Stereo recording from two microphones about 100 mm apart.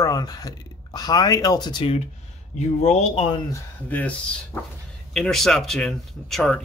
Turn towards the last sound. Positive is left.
turn(degrees=5)  # may be behind; listen again after turning